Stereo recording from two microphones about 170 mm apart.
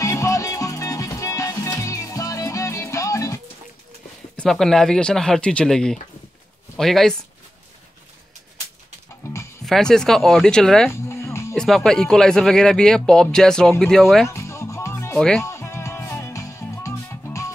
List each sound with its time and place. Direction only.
0.0 s music: 20° left (ahead or behind)
4.4 s speech: 5° left (ahead or behind)
9.7 s speech: 5° left (ahead or behind)
10.9 s music: 15° left (ahead or behind)
11.5 s speech: 5° left (ahead or behind)
14.3 s music: 15° left (ahead or behind)
15.1 s speech: 5° left (ahead or behind)
15.4 s music: 15° left (ahead or behind)